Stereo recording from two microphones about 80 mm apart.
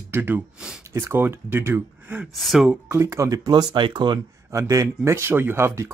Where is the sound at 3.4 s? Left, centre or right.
Right.